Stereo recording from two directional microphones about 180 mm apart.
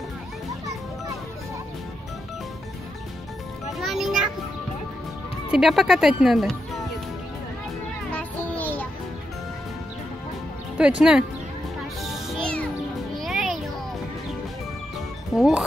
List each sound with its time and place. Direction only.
3.7 s music: centre (ahead or behind)
5.5 s speech: centre (ahead or behind)
8.1 s music: 10° left (ahead or behind)
10.8 s speech: 5° right (ahead or behind)
12.0 s music: centre (ahead or behind)
15.3 s speech: centre (ahead or behind)